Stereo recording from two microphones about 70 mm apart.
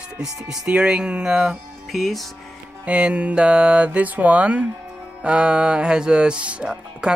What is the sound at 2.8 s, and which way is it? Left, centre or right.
Speech, centre.